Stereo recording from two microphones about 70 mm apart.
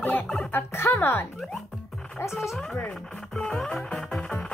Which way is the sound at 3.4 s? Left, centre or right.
Centre.